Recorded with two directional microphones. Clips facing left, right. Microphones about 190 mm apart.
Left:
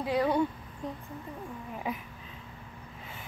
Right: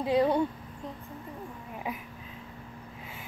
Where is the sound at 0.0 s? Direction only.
20° right (ahead or behind).